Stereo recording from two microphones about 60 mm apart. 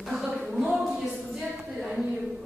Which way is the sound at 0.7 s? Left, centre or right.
Centre.